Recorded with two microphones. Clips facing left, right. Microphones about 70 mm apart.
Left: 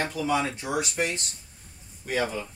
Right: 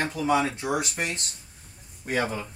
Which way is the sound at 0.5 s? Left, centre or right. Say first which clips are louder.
Right 1 dB; right.